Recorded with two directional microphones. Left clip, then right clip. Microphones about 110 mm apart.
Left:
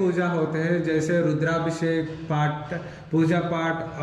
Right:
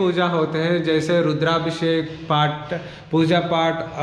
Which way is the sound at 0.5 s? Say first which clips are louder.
Right 4 dB; 90° right.